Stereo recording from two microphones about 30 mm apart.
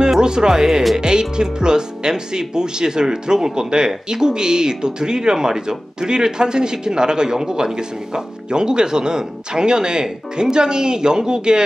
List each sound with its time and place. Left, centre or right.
0.2 s speech: right